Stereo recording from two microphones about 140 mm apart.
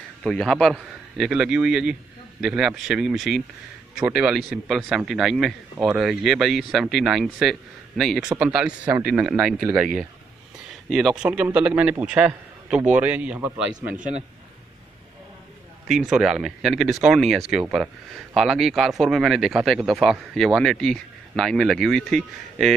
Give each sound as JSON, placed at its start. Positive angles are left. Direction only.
{"t": 0.2, "sound": "speech", "side_deg": 5}
{"t": 10.7, "sound": "a man's voice", "side_deg": 0}
{"t": 13.9, "sound": "a man's voice", "side_deg": -65}
{"t": 15.9, "sound": "speech", "side_deg": -5}